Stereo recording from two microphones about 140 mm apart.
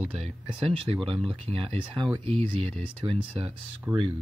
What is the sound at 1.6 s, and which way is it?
Speech, 35° right (ahead or behind).